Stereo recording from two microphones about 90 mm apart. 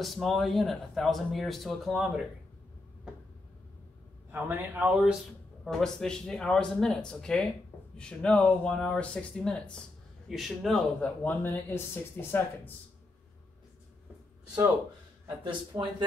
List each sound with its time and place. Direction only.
0.0 s a man's voice: centre (ahead or behind)
4.3 s a man's voice: 25° right (ahead or behind)
5.7 s a man's voice: 5° left (ahead or behind)
11.0 s speech: 20° left (ahead or behind)
15.2 s speech: 60° right (ahead or behind)